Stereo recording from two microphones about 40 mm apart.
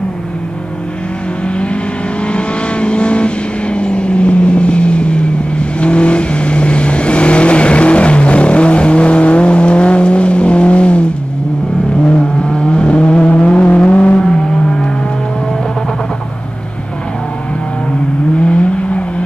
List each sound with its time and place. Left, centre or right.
2.2 s vehicle: left
12.1 s vehicle: left
14.2 s vehicle: centre
18.4 s vehicle: left